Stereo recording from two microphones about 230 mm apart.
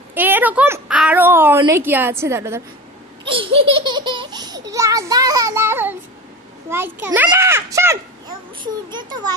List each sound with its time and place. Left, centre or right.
0.1 s a sound: centre
1.6 s a child's voice: centre
3.3 s baby laughter: right
4.6 s a child's voice: centre